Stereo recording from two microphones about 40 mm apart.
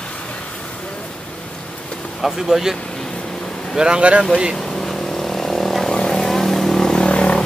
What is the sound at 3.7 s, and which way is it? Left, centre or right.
Speech, right.